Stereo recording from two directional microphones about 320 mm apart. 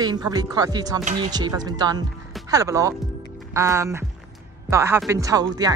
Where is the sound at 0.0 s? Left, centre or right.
Centre.